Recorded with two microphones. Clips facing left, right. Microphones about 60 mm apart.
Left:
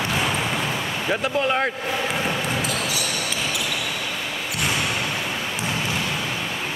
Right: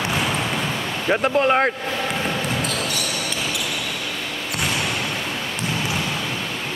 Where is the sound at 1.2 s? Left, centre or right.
Right.